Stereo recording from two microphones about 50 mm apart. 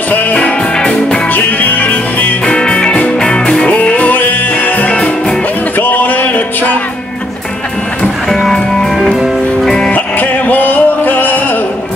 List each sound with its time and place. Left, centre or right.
0.1 s music: left
0.7 s music: centre
1.3 s music: left
2.4 s music: centre
3.6 s music: left
5.8 s a sound: left
8.3 s music: centre
9.7 s music: centre
9.9 s music: left